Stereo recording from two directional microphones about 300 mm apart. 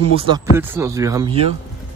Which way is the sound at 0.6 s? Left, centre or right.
Centre.